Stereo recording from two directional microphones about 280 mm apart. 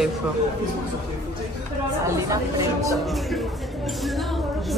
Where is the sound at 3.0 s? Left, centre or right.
Centre.